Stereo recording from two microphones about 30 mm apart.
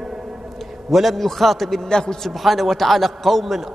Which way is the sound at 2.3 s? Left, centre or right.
Centre.